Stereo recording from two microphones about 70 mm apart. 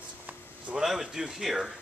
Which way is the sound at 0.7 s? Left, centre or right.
Centre.